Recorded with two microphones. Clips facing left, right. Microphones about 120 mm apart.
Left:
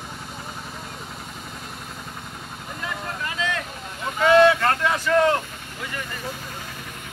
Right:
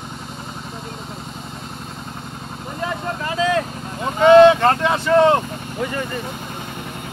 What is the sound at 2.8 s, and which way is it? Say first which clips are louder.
Vehicle: right 6 dB; 35° right (ahead or behind).